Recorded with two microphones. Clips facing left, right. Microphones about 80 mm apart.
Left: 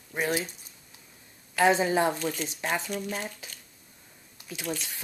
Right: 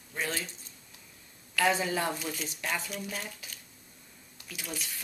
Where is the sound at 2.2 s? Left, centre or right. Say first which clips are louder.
Left 5 dB; centre.